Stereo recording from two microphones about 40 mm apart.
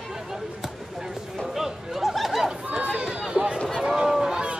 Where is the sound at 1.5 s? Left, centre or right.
Centre.